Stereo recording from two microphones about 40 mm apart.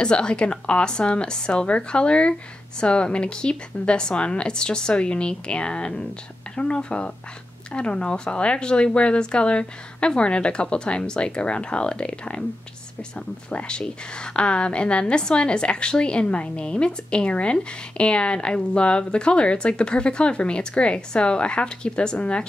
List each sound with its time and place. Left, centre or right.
0.0 s a woman's voice: left
13.5 s a woman's voice: left